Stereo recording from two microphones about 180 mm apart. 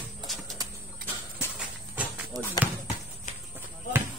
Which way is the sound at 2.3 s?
20° right (ahead or behind).